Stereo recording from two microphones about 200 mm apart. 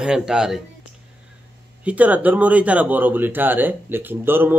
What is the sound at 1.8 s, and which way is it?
Speech, 5° right (ahead or behind).